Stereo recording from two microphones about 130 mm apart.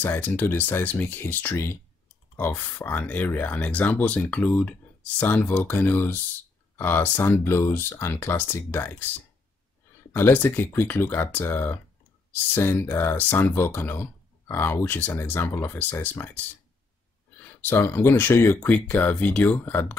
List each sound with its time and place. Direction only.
0.0 s speech: 15° left (ahead or behind)
10.1 s speech: 15° left (ahead or behind)